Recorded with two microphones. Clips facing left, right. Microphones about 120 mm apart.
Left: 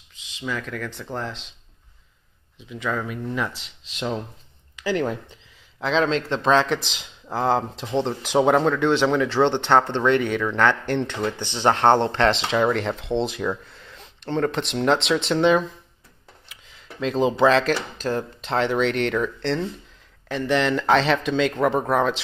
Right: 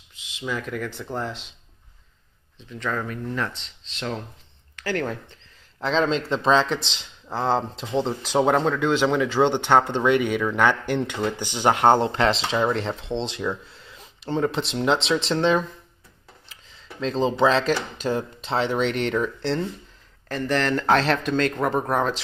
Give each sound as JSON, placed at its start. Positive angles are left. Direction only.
{"t": 0.4, "sound": "speech", "side_deg": -5}
{"t": 2.7, "sound": "speech", "side_deg": 5}
{"t": 5.8, "sound": "speech", "side_deg": 0}
{"t": 16.6, "sound": "speech", "side_deg": 5}